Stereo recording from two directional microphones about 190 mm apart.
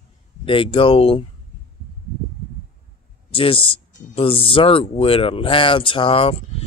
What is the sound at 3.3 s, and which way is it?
Speech, 30° left (ahead or behind).